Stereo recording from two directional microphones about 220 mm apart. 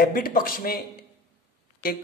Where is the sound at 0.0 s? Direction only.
40° left (ahead or behind).